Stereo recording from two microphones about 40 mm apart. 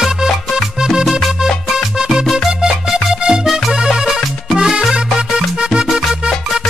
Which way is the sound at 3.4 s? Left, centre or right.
Centre.